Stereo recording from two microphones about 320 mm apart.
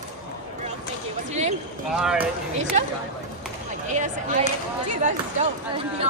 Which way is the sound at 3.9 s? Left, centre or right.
Right.